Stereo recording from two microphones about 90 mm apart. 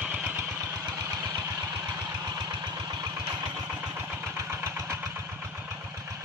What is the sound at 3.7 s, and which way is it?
Vehicle, 20° right (ahead or behind).